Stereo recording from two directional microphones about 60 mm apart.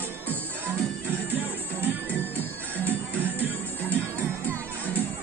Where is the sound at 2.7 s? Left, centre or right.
Right.